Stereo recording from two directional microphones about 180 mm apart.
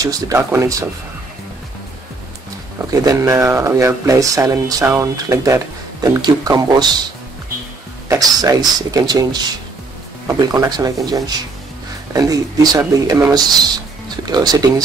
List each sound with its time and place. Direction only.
0.0 s speech: 15° right (ahead or behind)
2.9 s speech: 20° right (ahead or behind)
8.1 s speech: 20° right (ahead or behind)